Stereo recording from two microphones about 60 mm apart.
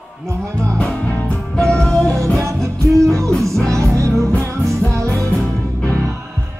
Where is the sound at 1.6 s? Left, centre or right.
Centre.